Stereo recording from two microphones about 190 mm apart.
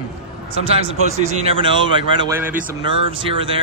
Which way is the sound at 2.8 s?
25° right (ahead or behind).